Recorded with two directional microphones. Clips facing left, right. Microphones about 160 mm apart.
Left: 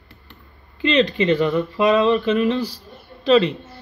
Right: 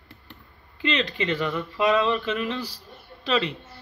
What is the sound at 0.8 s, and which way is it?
Speech, 25° left (ahead or behind).